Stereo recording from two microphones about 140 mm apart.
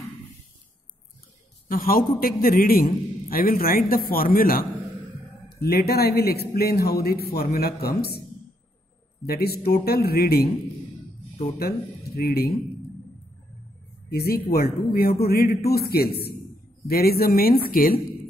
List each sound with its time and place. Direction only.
1.7 s a man's voice: 90° left
9.2 s a man's voice: 90° left
12.2 s a man's voice: 90° left
14.1 s a man's voice: 90° left